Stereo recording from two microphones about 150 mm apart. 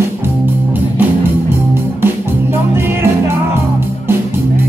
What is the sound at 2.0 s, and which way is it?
Music, 15° right (ahead or behind).